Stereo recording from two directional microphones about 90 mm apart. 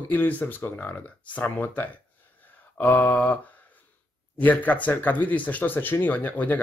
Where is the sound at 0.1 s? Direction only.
20° left (ahead or behind).